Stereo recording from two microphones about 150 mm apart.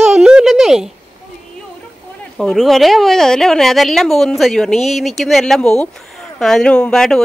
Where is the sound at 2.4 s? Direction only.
Centre (ahead or behind).